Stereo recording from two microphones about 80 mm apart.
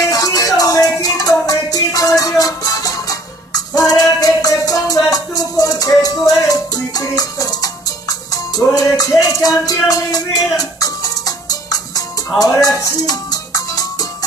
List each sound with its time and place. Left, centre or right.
0.0 s music: left